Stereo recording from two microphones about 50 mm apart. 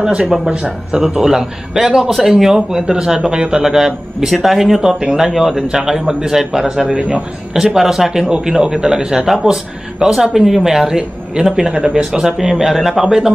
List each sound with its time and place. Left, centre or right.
0.0 s speech: right
1.1 s a man's voice: centre